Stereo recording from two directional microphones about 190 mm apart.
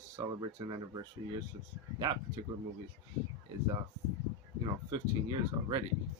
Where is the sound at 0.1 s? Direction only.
20° right (ahead or behind).